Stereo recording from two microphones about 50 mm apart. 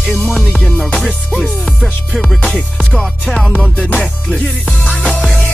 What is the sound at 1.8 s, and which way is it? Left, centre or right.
Music, centre.